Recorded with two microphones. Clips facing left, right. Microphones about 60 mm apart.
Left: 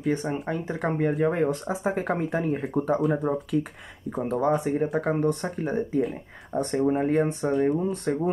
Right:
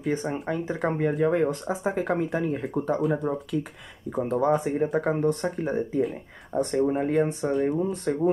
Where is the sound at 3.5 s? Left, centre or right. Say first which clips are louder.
Left 5 dB; left.